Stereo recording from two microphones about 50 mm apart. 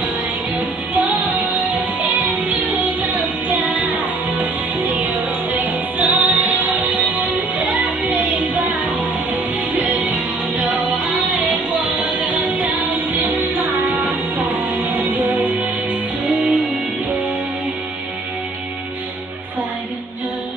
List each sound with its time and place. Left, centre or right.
0.9 s music: right
12.0 s music: right